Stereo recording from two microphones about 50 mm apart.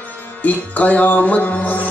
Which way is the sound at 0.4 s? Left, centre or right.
Left.